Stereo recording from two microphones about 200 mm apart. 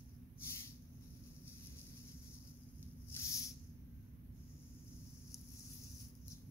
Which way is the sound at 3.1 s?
10° left (ahead or behind).